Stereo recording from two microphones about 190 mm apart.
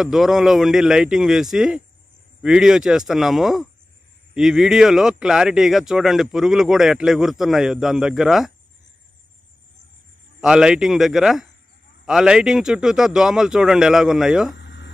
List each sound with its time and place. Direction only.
0.0 s speech: centre (ahead or behind)
10.4 s speech: 5° right (ahead or behind)
14.5 s a sound: 65° left (ahead or behind)